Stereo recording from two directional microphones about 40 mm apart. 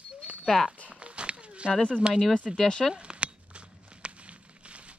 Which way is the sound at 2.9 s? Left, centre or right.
Right.